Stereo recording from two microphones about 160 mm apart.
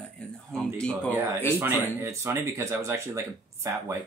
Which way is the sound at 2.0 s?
15° right (ahead or behind).